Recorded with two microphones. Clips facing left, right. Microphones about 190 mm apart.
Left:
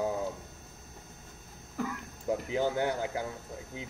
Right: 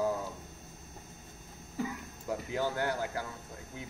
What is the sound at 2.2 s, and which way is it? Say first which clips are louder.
Speech: left 4 dB; 20° left (ahead or behind).